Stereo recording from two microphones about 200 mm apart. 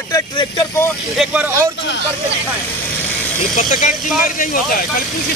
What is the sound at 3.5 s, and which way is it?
Speech, 40° left (ahead or behind).